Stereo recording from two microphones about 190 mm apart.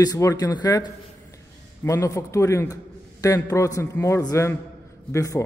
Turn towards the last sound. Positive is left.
turn(degrees=15)  # may be behind; listen again after turning